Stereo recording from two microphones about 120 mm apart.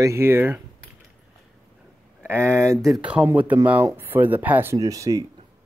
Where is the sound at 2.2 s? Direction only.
20° right (ahead or behind).